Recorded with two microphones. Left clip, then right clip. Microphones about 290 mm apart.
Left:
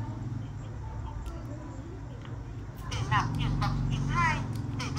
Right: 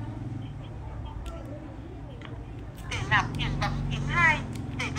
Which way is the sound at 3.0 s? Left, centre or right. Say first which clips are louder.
Right 4 dB; centre.